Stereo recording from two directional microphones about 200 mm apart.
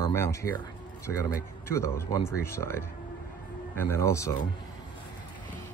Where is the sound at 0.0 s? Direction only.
15° left (ahead or behind).